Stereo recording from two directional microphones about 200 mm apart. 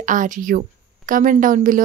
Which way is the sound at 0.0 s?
40° right (ahead or behind).